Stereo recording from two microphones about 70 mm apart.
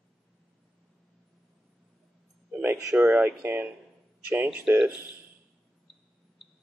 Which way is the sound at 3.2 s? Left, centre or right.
Right.